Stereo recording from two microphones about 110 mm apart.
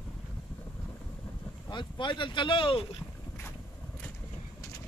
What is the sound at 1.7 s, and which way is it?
Speech, 45° left (ahead or behind).